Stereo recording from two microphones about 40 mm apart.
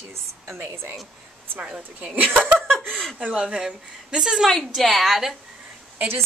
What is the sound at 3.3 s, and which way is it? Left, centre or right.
A woman's voice, centre.